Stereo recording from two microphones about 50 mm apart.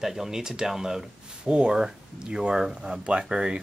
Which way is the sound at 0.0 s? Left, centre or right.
Centre.